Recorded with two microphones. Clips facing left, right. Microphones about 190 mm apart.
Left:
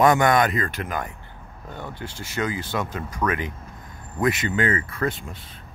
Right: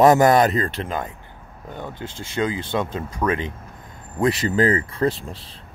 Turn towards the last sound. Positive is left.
turn(degrees=-30)  # may be behind; listen again after turning